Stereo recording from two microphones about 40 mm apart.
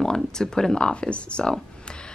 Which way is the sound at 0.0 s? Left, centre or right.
Centre.